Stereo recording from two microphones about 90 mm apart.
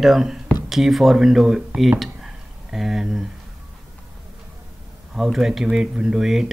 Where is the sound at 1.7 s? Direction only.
Centre (ahead or behind).